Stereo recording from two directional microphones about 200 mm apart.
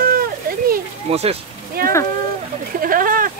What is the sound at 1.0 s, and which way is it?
Speech, 30° right (ahead or behind).